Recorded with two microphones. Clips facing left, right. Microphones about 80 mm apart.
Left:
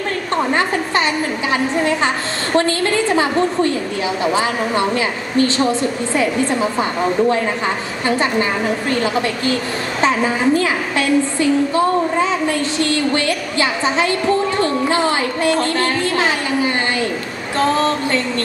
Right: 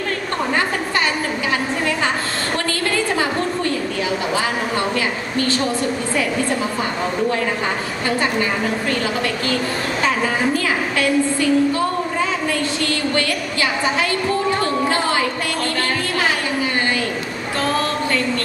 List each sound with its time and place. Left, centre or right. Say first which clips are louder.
4.4 s a woman's voice: left 3 dB; left
10.6 s a woman's voice: left 1 dB; left
13.1 s a woman's voice: left 2 dB; left
15.4 s music: left 5 dB; left
17.6 s a woman's voice: left 5 dB; left